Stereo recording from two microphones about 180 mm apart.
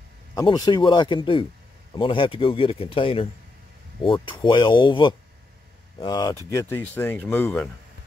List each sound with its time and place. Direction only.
0.3 s speech: 20° left (ahead or behind)